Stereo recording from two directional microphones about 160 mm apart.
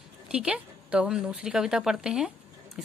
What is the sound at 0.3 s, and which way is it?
A woman's voice, 5° right (ahead or behind).